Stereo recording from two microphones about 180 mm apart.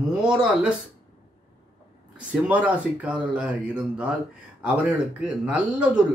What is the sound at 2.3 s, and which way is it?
Speech, 5° right (ahead or behind).